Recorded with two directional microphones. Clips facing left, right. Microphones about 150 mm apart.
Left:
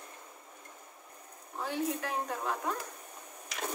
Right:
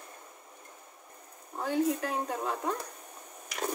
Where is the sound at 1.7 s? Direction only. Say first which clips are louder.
Right 5 dB; 30° right (ahead or behind).